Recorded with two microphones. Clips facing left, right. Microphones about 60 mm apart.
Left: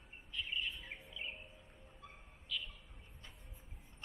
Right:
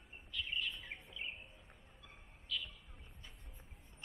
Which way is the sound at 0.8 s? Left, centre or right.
Centre.